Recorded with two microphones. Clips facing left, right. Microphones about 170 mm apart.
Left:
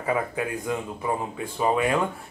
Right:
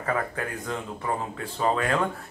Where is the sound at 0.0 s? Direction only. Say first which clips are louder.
Left 2 dB; 10° left (ahead or behind).